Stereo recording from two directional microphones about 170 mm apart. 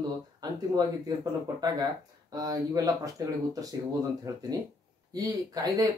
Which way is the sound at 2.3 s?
20° right (ahead or behind).